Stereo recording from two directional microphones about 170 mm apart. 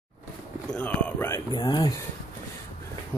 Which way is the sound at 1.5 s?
25° left (ahead or behind).